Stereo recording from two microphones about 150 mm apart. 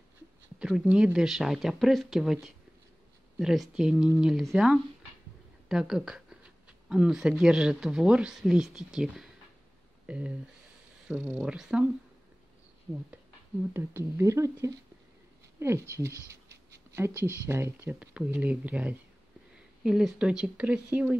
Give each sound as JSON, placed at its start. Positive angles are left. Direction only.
{"t": 0.6, "sound": "speech", "side_deg": -5}
{"t": 13.7, "sound": "speech", "side_deg": -15}